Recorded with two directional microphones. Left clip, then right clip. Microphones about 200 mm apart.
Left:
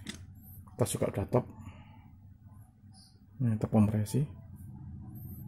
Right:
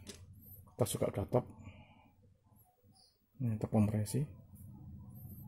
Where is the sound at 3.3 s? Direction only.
5° left (ahead or behind).